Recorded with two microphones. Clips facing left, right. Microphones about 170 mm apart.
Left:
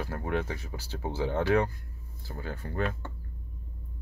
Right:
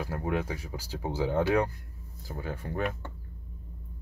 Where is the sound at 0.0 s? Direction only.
10° right (ahead or behind).